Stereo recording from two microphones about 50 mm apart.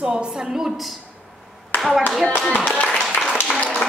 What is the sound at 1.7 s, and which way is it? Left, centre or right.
Clapping, left.